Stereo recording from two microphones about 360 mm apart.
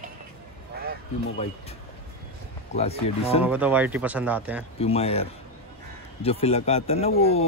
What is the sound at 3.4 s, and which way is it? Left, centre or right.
Speech, centre.